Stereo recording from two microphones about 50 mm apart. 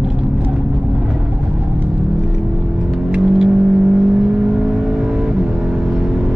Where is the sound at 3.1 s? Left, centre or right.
Centre.